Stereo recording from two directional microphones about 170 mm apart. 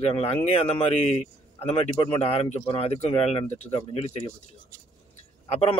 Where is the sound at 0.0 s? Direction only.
35° left (ahead or behind).